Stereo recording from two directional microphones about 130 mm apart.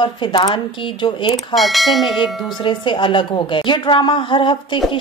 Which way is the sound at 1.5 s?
Centre (ahead or behind).